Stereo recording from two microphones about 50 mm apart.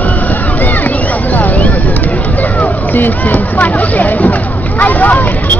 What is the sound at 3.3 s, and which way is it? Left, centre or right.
Speech, left.